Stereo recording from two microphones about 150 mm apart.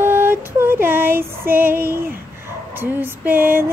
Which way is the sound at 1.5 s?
15° right (ahead or behind).